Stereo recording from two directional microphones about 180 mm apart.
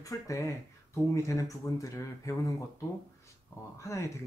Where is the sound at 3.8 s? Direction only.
15° left (ahead or behind).